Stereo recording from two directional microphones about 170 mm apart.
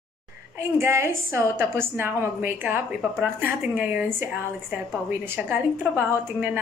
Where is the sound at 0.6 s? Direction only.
15° right (ahead or behind).